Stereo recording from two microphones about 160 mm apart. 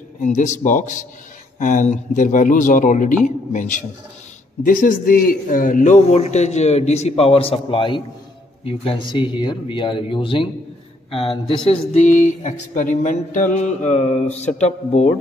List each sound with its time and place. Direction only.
0.2 s a man's voice: 50° left (ahead or behind)
4.6 s a man's voice: 55° left (ahead or behind); by 12.0 s 35° left (ahead or behind)
12.0 s a man's voice: 50° left (ahead or behind)